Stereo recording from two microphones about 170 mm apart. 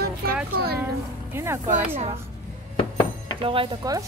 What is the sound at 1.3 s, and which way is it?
Speech, 15° right (ahead or behind).